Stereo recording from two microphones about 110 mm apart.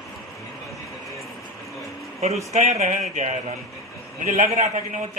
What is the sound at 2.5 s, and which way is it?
Speech, 85° right.